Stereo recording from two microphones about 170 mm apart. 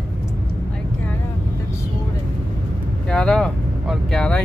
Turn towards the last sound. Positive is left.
turn(degrees=5)  # may be behind; listen again after turning